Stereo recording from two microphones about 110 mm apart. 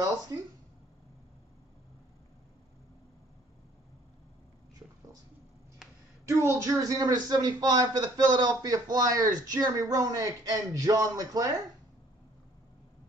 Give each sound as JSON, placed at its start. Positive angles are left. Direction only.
{"t": 0.3, "sound": "a man's voice", "side_deg": -35}
{"t": 5.8, "sound": "a sound", "side_deg": -5}
{"t": 6.2, "sound": "a man's voice", "side_deg": -30}